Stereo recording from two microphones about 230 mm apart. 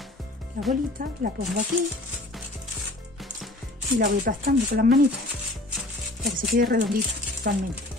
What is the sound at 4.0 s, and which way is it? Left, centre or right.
Speech, right.